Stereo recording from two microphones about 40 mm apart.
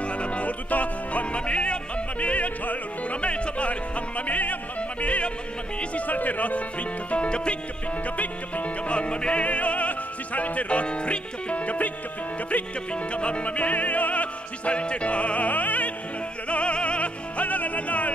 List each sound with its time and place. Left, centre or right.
0.0 s music: left
4.3 s yodeling: left
5.0 s music: left
8.2 s music: left
8.9 s music: left
13.1 s music: left
16.4 s music: left